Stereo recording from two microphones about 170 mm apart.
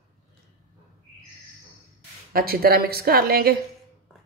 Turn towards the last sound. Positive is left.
turn(degrees=-65)  # may be behind; listen again after turning